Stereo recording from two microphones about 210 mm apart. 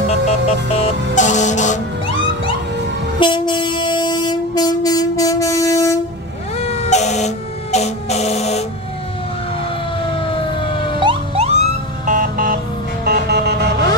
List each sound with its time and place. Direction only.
0.3 s music: 30° left (ahead or behind)
3.2 s train: 20° left (ahead or behind)
6.6 s a sound: 30° left (ahead or behind)
11.0 s emergency vehicle: 25° right (ahead or behind)
12.1 s music: 40° right (ahead or behind)
13.0 s a sound: 50° right (ahead or behind)